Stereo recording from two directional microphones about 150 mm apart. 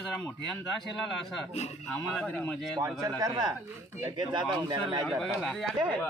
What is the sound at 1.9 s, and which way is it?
Speech, 5° left (ahead or behind).